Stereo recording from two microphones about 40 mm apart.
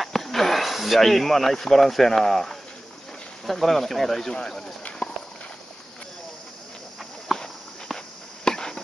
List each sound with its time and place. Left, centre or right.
0.0 s speech: centre
7.3 s clip-clop: centre
8.5 s chopping: centre